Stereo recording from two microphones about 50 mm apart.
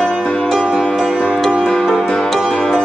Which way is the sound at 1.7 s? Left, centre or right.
Centre.